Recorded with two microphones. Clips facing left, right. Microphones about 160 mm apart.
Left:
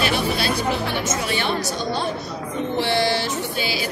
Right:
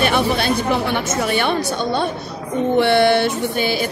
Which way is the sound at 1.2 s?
55° right (ahead or behind).